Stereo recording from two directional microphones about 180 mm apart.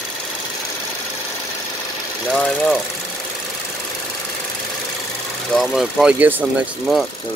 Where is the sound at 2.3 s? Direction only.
5° left (ahead or behind).